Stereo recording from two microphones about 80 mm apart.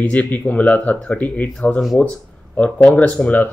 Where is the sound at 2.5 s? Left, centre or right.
Centre.